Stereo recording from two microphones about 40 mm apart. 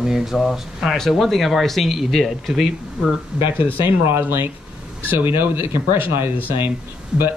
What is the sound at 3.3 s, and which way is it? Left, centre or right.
Speech, right.